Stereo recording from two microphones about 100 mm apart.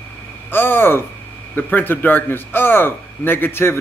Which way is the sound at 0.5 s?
20° left (ahead or behind).